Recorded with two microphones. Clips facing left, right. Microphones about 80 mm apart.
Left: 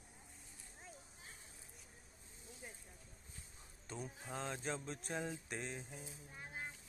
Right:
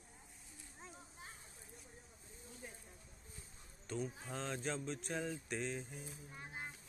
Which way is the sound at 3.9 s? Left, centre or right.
Centre.